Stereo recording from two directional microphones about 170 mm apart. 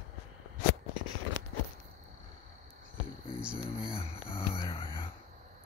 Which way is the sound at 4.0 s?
35° left (ahead or behind).